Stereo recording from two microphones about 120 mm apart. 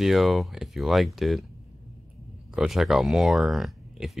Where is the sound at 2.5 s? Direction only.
5° right (ahead or behind).